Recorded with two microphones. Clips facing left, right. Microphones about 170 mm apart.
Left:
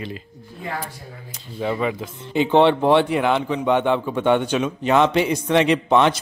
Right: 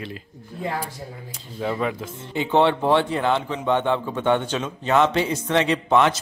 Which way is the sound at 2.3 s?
20° left (ahead or behind).